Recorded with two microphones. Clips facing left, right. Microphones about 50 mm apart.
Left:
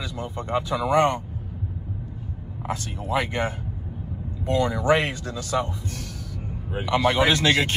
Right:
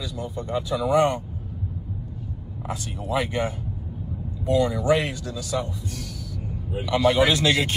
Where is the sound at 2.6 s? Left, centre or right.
Left.